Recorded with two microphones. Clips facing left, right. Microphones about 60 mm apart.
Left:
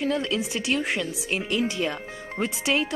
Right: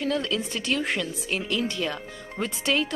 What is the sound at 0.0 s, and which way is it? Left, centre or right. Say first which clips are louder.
Speech: left 1 dB; centre.